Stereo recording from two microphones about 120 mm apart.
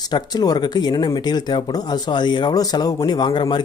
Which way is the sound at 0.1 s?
35° left (ahead or behind).